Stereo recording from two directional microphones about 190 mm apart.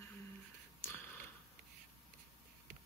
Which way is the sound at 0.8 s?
10° left (ahead or behind).